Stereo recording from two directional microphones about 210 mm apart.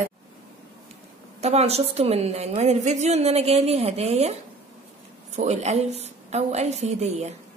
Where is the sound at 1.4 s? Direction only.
30° right (ahead or behind).